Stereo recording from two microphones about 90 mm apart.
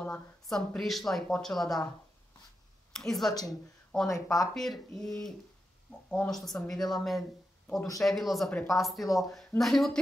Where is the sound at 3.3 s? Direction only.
45° left (ahead or behind).